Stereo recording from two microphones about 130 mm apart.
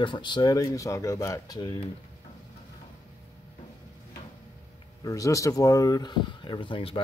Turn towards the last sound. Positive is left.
turn(degrees=40)  # may be behind; listen again after turning